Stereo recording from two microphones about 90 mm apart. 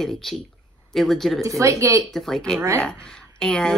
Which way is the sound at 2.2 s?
5° left (ahead or behind).